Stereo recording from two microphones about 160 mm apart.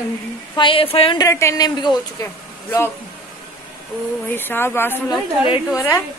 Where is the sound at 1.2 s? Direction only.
20° left (ahead or behind).